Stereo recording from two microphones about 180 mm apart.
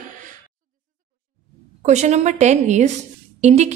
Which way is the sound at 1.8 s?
40° right (ahead or behind).